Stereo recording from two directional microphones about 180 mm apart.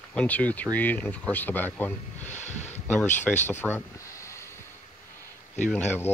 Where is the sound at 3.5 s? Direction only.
10° left (ahead or behind).